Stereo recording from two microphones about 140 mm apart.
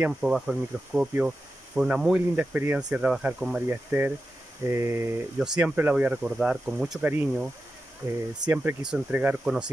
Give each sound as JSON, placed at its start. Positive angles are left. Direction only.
{"t": 0.0, "sound": "speech", "side_deg": -5}
{"t": 5.4, "sound": "speech", "side_deg": -5}
{"t": 8.5, "sound": "speech", "side_deg": -10}